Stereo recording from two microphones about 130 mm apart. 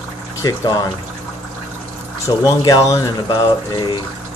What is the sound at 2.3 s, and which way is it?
Speech, 35° left (ahead or behind).